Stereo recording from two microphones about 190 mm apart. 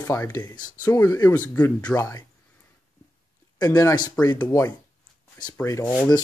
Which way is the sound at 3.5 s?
20° left (ahead or behind).